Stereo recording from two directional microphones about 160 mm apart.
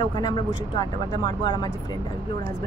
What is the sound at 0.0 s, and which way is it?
Speech, 30° left (ahead or behind).